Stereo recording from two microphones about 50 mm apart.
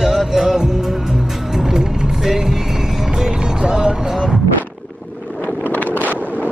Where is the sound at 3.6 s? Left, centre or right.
Centre.